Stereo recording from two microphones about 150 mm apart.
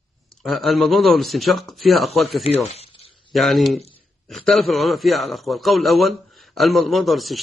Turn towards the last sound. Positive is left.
turn(degrees=0)  # may be behind; listen again after turning